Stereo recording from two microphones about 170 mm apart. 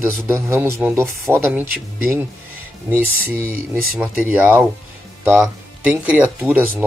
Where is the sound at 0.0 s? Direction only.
15° right (ahead or behind).